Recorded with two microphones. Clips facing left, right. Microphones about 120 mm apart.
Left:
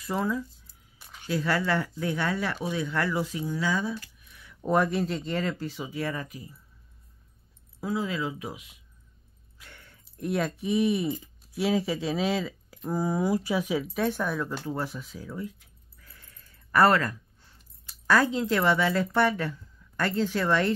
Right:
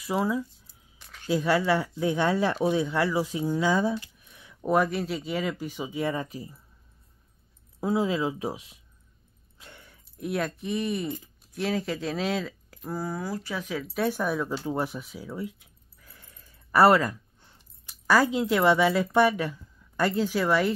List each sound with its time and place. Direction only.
0.0 s speech: 10° right (ahead or behind)
2.3 s speech: 35° right (ahead or behind)
2.7 s speech: 20° right (ahead or behind)
4.0 s a sound: 20° right (ahead or behind)
4.6 s speech: 5° right (ahead or behind); by 6.5 s 30° right (ahead or behind)
7.8 s speech: 25° right (ahead or behind)
9.6 s a sound: 20° right (ahead or behind)
9.8 s speech: centre (ahead or behind)
12.9 s speech: 15° left (ahead or behind)
13.9 s speech: 5° right (ahead or behind)
14.7 s a sound: 15° right (ahead or behind)
16.8 s speech: 15° right (ahead or behind)